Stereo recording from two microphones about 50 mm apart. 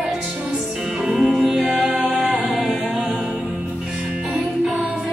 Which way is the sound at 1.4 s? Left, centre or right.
Centre.